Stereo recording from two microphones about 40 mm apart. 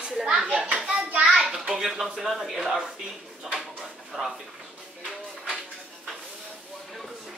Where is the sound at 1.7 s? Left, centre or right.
Centre.